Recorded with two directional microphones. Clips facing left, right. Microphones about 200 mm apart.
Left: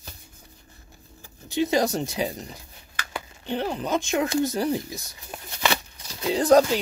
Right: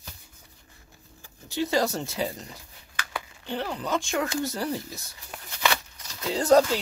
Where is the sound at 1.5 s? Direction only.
20° left (ahead or behind).